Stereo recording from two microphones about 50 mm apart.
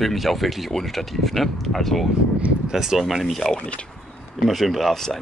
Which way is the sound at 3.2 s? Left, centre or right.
Centre.